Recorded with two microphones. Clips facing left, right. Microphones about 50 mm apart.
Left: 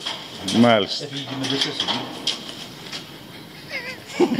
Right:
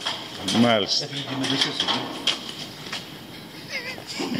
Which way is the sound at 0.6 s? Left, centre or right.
Centre.